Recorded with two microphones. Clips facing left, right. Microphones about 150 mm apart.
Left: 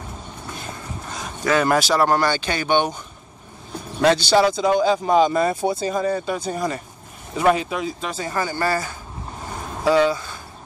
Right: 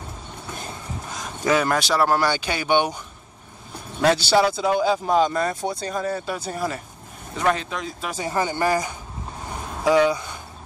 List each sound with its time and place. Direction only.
1.7 s speech: centre (ahead or behind)
4.0 s speech: 10° right (ahead or behind)
7.3 s speech: 10° left (ahead or behind)
8.0 s speech: 15° right (ahead or behind)